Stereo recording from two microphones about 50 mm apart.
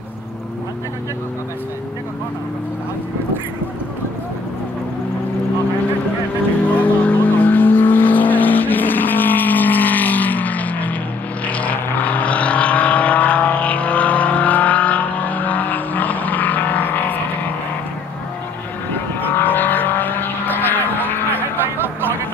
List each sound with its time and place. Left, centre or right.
6.8 s vehicle: left
19.2 s vehicle: left
21.7 s a sound: right